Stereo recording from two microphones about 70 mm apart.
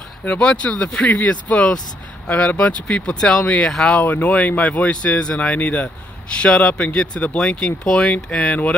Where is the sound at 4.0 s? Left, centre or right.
Left.